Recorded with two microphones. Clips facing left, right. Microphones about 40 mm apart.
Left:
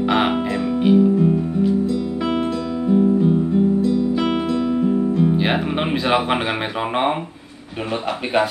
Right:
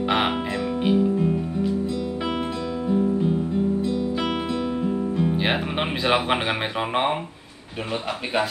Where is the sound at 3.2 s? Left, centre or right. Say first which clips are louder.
Left 6 dB; centre.